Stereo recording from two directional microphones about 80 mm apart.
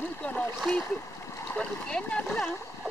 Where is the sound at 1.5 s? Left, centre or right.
Centre.